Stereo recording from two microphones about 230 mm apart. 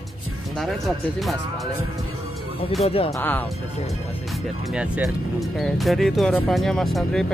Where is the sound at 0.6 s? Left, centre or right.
Centre.